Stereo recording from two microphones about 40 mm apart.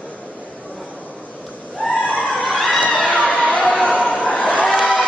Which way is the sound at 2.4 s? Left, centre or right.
Centre.